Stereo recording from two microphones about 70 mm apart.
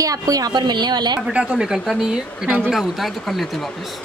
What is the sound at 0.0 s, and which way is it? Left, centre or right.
A woman's voice, right.